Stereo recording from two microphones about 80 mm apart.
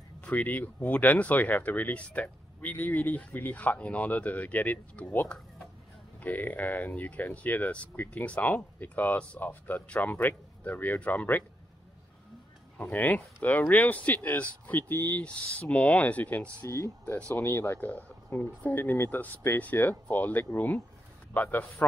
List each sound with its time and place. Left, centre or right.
0.2 s speech: centre
12.7 s speech: left
15.2 s speech: centre
16.6 s speech: left